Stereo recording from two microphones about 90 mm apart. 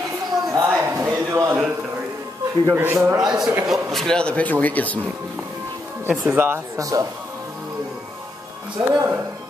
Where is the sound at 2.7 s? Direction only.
25° right (ahead or behind).